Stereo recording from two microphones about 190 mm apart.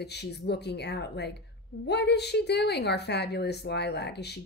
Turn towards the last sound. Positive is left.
turn(degrees=60)  # may be behind; listen again after turning